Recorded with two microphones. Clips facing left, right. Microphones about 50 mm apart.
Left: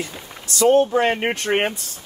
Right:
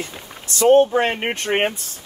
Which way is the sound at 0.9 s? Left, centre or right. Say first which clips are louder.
Left 1 dB; centre.